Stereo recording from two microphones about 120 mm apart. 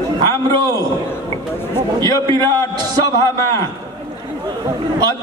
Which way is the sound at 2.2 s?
35° right (ahead or behind).